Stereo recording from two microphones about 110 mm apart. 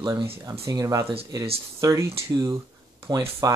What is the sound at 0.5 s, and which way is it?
Speech, 30° right (ahead or behind).